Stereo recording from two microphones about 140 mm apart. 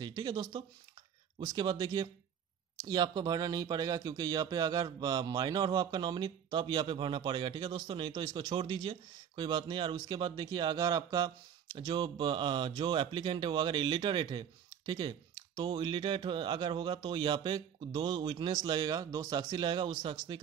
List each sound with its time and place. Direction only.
0.0 s speech: 30° right (ahead or behind)